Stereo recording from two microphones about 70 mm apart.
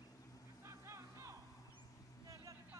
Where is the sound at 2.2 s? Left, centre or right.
Right.